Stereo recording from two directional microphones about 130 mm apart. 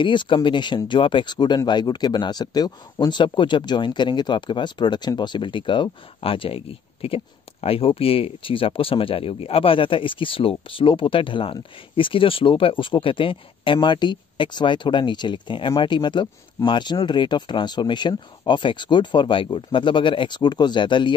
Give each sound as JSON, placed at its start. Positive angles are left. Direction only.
{"t": 0.0, "sound": "speech", "side_deg": 40}